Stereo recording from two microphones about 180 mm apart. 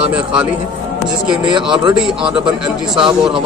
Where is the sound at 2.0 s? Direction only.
5° right (ahead or behind).